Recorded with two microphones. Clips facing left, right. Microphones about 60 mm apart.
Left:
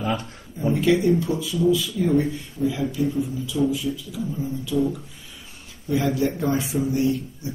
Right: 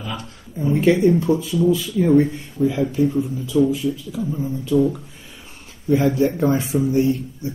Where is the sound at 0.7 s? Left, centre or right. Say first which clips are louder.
Right 4 dB; right.